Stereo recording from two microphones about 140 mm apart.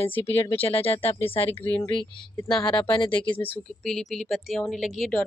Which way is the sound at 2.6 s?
30° left (ahead or behind).